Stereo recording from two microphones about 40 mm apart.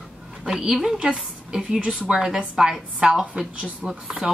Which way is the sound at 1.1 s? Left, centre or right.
Centre.